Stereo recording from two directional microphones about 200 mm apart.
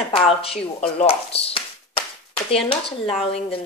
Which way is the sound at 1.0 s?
30° left (ahead or behind).